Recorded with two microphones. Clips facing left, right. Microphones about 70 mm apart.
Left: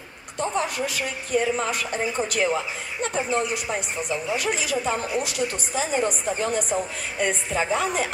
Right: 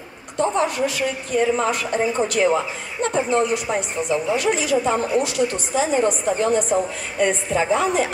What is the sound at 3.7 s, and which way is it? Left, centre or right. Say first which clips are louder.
Speech: right 5 dB; centre.